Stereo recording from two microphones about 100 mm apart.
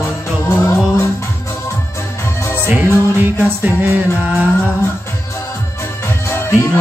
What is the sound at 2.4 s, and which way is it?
Music, 25° left (ahead or behind).